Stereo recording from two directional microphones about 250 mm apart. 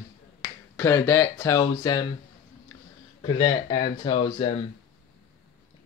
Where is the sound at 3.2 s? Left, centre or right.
Centre.